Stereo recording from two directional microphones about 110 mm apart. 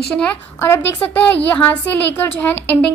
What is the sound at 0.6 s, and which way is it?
A woman's voice, 20° left (ahead or behind).